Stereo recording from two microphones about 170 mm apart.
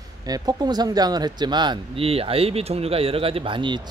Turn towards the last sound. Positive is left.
turn(degrees=-30)  # may be behind; listen again after turning